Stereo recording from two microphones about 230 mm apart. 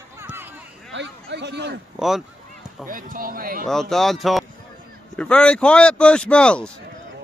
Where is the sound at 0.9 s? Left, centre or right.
Right.